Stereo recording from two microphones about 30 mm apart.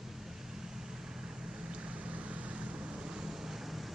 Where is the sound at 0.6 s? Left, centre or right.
Centre.